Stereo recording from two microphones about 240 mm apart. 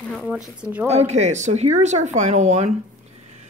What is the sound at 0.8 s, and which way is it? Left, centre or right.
Speech, right.